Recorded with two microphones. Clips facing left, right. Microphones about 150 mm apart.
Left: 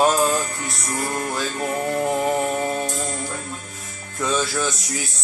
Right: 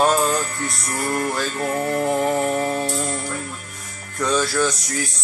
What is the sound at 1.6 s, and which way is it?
Music, 15° left (ahead or behind).